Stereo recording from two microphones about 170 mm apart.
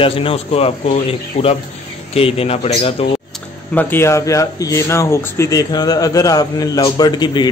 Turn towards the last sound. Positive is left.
turn(degrees=25)  # may be behind; listen again after turning